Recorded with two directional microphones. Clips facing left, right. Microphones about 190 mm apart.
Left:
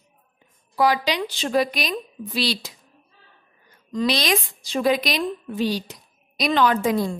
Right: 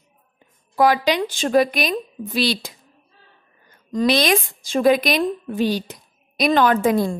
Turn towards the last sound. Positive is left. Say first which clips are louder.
# right 3 dB
turn(degrees=-55)  # may be behind; listen again after turning